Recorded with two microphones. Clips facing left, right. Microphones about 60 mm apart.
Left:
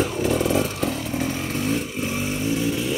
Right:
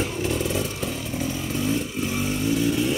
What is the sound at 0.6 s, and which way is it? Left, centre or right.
Motorcycle, left.